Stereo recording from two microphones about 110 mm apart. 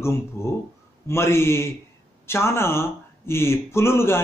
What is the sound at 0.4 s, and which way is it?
Speech, 25° left (ahead or behind).